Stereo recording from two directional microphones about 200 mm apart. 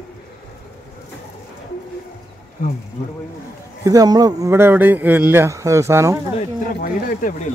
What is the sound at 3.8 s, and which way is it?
Speech, 15° right (ahead or behind).